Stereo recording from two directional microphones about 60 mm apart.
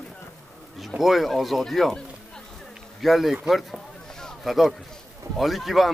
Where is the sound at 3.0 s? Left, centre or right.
Centre.